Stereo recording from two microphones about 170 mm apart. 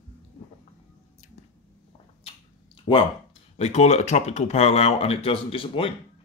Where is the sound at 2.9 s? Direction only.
30° left (ahead or behind).